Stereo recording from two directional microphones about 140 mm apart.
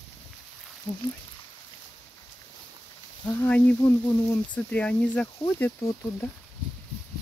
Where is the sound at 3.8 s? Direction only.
20° left (ahead or behind).